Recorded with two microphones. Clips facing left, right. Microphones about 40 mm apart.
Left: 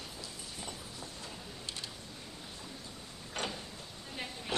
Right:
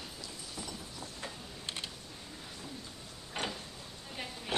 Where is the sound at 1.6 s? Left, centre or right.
Right.